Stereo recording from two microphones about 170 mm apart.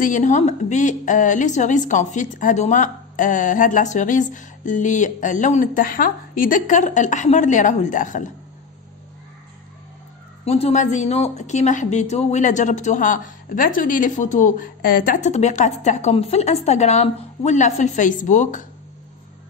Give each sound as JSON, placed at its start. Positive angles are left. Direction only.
{"t": 0.0, "sound": "a woman's voice", "side_deg": 45}
{"t": 10.4, "sound": "a woman's voice", "side_deg": 40}